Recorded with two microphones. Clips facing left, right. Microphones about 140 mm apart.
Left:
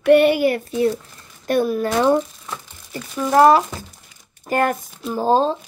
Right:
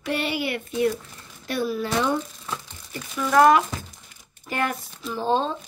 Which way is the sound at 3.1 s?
30° left (ahead or behind).